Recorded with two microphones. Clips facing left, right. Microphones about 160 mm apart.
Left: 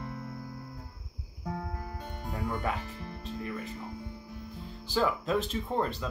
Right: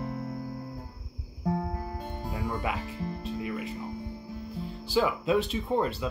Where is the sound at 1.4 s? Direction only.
30° right (ahead or behind).